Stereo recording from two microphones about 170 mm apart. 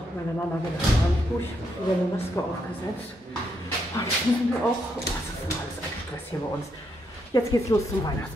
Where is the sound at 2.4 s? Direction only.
20° left (ahead or behind).